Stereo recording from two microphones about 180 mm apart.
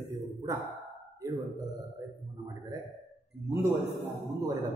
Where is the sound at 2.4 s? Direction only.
20° right (ahead or behind).